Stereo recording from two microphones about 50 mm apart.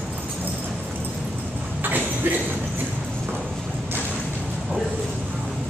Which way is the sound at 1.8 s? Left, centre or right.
Right.